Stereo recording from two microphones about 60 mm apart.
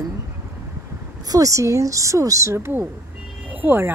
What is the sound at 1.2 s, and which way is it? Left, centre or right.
Speech, right.